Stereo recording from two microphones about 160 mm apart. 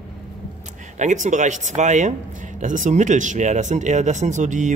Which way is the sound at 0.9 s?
50° right (ahead or behind).